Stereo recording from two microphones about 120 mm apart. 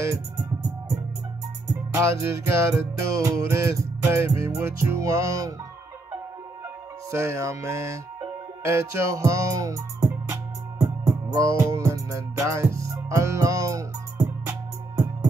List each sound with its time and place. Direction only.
0.0 s music: 25° right (ahead or behind)
2.0 s music: 25° right (ahead or behind)
7.1 s music: 25° right (ahead or behind)